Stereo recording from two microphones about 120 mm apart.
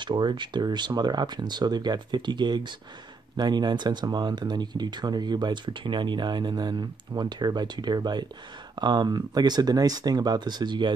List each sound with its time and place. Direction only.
0.0 s speech: 40° right (ahead or behind)